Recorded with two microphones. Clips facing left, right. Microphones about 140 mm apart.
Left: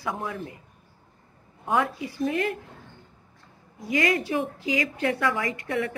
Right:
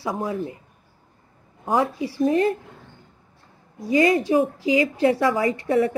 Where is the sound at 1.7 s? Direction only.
30° right (ahead or behind).